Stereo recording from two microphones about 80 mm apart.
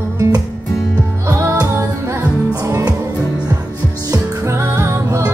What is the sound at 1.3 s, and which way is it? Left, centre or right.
Music, right.